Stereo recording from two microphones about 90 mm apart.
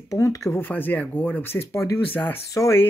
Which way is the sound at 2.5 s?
35° left (ahead or behind).